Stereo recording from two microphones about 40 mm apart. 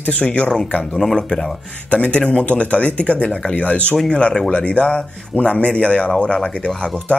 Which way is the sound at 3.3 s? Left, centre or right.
Left.